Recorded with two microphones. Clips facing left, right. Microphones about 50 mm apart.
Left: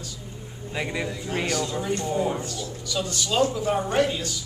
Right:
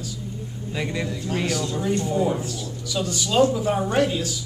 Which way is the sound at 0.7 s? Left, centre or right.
Centre.